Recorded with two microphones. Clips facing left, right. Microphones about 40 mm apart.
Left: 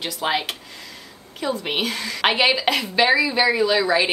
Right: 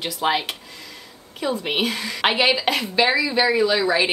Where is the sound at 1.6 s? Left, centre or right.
Centre.